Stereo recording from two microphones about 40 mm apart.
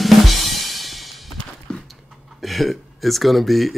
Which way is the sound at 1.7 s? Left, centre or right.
Centre.